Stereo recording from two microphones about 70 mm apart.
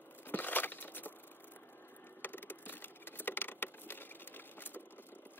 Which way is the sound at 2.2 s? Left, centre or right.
Left.